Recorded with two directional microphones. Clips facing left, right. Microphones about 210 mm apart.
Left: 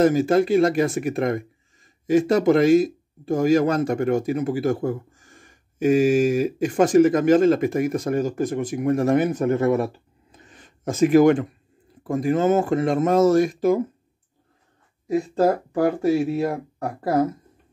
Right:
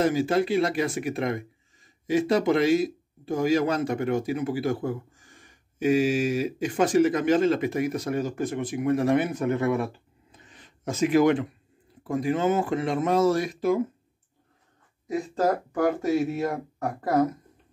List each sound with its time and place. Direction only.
0.0 s speech: 45° left (ahead or behind)
10.3 s a sound: 45° left (ahead or behind)
12.0 s speech: 45° left (ahead or behind)
15.3 s speech: 30° left (ahead or behind)